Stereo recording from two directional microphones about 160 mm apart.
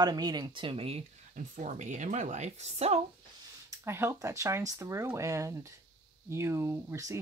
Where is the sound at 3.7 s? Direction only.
15° right (ahead or behind).